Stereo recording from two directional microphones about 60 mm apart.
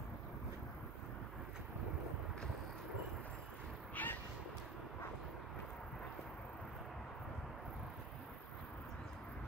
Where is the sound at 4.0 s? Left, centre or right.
Left.